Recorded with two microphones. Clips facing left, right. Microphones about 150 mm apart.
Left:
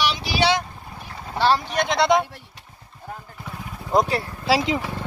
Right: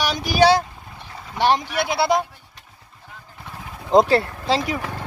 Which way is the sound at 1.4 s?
10° right (ahead or behind).